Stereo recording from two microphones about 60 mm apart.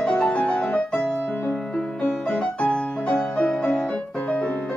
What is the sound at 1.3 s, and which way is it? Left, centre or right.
Music, left.